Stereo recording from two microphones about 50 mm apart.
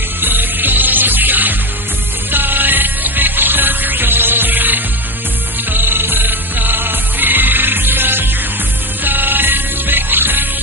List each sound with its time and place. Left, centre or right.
0.2 s music: right